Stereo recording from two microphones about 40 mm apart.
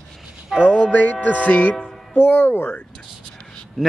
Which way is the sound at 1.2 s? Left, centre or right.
Left.